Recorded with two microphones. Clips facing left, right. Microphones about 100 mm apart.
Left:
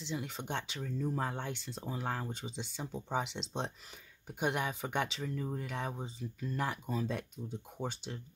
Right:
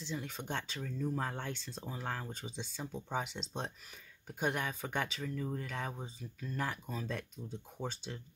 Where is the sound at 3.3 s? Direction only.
25° left (ahead or behind).